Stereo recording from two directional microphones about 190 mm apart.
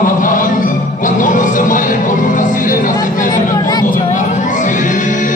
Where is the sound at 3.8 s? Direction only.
45° left (ahead or behind).